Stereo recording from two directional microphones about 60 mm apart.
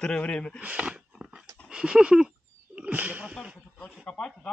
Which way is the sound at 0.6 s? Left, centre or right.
Right.